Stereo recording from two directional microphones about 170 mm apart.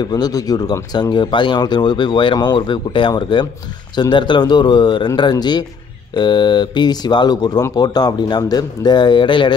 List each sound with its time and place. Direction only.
0.0 s speech: 20° left (ahead or behind)